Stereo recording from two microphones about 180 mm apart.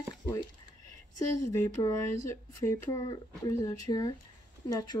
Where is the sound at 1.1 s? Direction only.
20° left (ahead or behind).